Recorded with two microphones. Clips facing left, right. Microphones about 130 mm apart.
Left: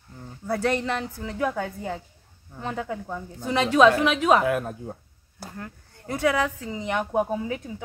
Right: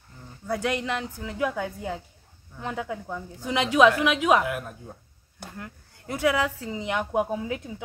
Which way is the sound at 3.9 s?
25° left (ahead or behind).